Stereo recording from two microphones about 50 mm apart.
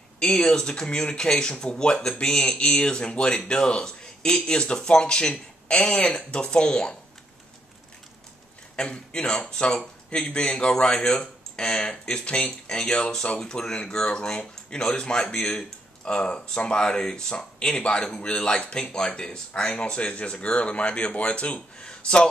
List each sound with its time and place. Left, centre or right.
0.2 s speech: centre
8.7 s speech: centre